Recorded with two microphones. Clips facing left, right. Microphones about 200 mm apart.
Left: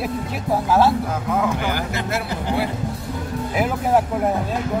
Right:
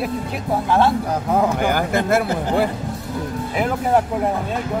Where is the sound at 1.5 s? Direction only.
50° right (ahead or behind).